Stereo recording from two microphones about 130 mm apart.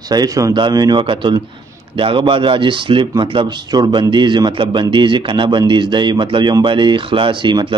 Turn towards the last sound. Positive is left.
turn(degrees=-40)  # may be behind; listen again after turning